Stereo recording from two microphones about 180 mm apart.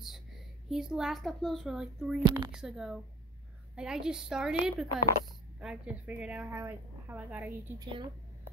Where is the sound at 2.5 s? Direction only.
5° right (ahead or behind).